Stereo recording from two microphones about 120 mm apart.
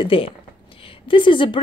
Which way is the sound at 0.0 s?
50° left (ahead or behind).